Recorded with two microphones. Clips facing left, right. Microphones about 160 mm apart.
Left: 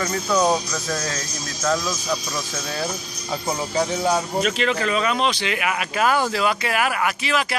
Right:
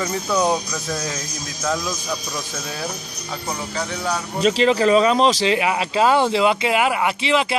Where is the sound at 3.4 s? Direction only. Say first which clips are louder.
Left 4 dB; 20° left (ahead or behind).